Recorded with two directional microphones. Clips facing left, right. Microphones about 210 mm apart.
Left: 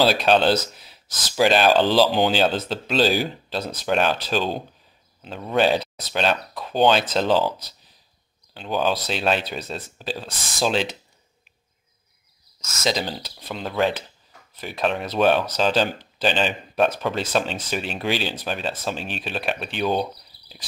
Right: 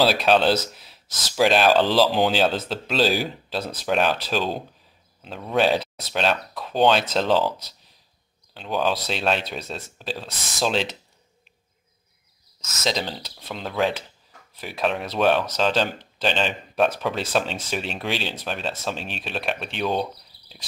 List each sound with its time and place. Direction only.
0.0 s speech: centre (ahead or behind)
0.7 s a sound: centre (ahead or behind)
1.3 s speech: centre (ahead or behind)
8.5 s speech: centre (ahead or behind)
12.8 s speech: 5° left (ahead or behind)